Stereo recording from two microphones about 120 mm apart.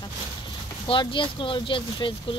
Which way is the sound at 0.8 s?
45° left (ahead or behind).